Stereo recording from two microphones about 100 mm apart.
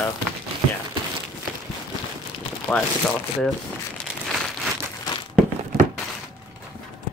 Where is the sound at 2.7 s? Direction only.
10° left (ahead or behind).